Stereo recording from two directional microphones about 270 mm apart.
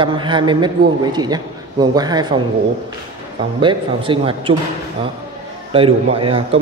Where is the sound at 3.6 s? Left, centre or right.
Centre.